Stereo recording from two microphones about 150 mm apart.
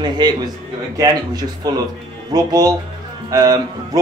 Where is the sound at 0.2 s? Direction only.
30° right (ahead or behind).